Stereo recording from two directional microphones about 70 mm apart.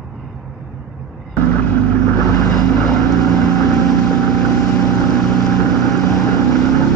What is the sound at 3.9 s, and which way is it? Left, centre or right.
Boat, centre.